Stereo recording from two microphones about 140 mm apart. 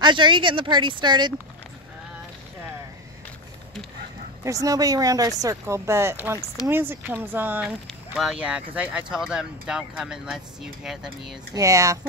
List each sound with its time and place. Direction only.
0.0 s speech: 35° right (ahead or behind)
4.5 s speech: 25° right (ahead or behind)
7.6 s speech: 5° right (ahead or behind)
11.5 s speech: 20° right (ahead or behind)